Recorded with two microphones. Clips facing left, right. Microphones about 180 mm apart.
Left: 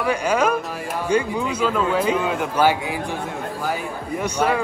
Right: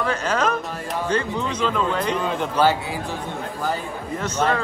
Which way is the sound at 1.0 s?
10° left (ahead or behind).